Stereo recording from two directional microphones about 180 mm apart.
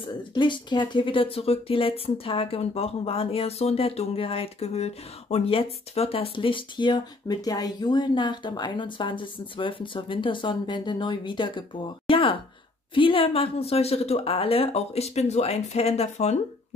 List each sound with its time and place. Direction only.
0.0 s a woman's voice: 25° left (ahead or behind)